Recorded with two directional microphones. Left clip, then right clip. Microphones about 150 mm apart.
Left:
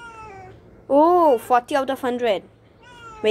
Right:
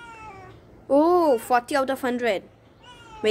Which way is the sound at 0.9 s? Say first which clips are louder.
Left 4 dB; 10° right (ahead or behind).